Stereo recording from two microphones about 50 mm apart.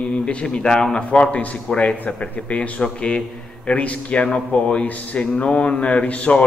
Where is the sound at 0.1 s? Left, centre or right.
Left.